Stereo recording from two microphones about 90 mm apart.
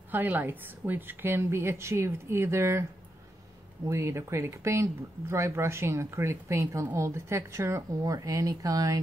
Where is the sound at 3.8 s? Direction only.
30° right (ahead or behind).